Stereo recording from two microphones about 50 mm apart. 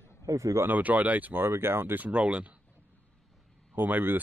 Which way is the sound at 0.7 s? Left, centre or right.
Right.